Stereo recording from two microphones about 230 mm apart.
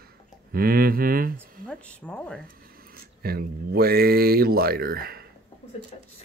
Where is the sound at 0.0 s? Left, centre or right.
Right.